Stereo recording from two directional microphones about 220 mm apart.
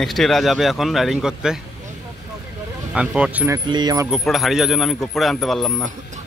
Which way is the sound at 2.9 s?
5° right (ahead or behind).